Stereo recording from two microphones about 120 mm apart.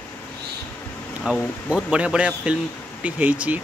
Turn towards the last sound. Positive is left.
turn(degrees=-10)  # may be behind; listen again after turning